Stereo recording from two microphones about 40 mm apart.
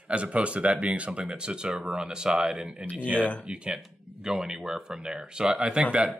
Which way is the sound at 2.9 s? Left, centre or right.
Right.